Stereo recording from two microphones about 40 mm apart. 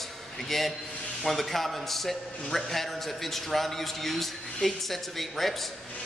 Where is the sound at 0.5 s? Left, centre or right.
Centre.